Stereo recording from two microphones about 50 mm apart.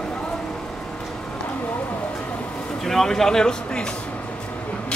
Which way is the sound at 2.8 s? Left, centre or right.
Centre.